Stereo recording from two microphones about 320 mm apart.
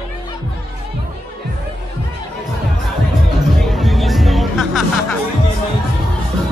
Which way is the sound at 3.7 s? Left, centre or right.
Centre.